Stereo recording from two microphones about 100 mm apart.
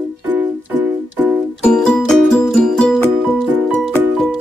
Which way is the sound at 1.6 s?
10° left (ahead or behind).